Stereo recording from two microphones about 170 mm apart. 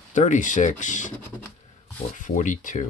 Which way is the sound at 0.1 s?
45° left (ahead or behind).